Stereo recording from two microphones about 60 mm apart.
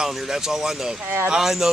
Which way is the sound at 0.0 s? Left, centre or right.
Centre.